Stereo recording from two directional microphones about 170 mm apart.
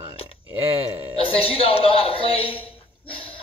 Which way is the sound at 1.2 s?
35° left (ahead or behind).